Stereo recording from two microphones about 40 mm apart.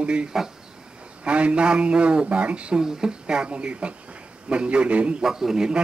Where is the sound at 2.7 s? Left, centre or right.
Centre.